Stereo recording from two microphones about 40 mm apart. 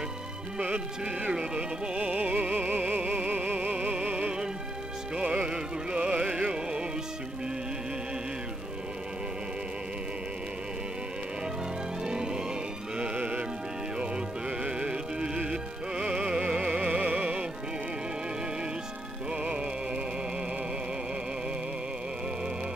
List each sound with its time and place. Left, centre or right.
1.3 s speech: right
2.0 s music: right
4.1 s music: right
12.0 s music: centre; by 13.5 s right
13.9 s music: right
16.7 s music: right